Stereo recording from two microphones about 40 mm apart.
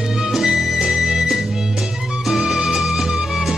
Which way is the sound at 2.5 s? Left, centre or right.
Centre.